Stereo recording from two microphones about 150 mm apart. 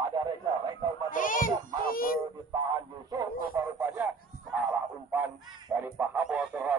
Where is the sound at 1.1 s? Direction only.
60° left (ahead or behind).